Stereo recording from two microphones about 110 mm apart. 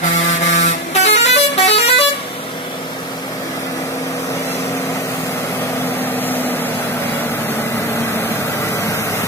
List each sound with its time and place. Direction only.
0.4 s vehicle: 90° left; by 2.0 s 65° left (ahead or behind)
6.1 s vehicle: 15° left (ahead or behind)